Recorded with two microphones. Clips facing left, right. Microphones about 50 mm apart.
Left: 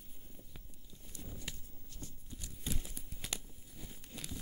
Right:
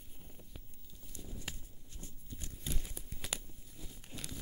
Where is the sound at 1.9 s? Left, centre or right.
Right.